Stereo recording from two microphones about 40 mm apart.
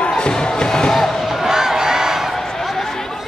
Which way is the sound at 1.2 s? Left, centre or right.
Centre.